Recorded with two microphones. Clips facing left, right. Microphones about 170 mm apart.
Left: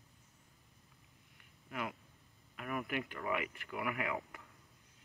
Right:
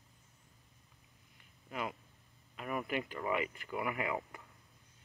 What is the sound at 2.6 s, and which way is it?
Speech, 25° right (ahead or behind).